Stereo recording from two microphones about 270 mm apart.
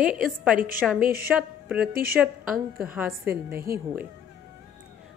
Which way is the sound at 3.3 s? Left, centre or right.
Right.